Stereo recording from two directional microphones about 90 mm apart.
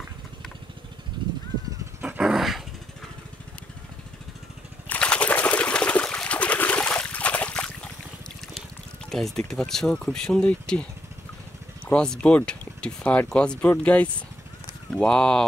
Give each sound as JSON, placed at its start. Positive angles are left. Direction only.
{"t": 1.2, "sound": "crow", "side_deg": -65}
{"t": 2.0, "sound": "dog", "side_deg": -10}
{"t": 4.8, "sound": "water", "side_deg": 15}
{"t": 9.1, "sound": "speech", "side_deg": 5}